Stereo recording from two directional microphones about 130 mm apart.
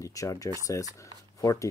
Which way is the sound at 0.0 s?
25° left (ahead or behind).